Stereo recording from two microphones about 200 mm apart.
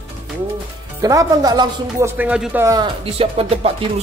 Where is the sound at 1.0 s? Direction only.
20° right (ahead or behind).